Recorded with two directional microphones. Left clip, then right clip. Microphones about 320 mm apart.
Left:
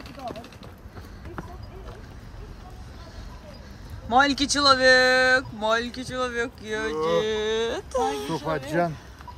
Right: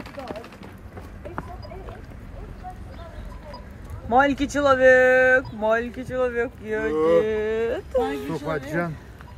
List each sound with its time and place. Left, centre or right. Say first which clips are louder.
4.1 s speech: right 1 dB; centre
8.5 s speech: left 2 dB; left